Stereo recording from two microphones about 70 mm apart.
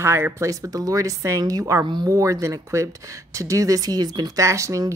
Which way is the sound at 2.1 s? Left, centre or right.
Right.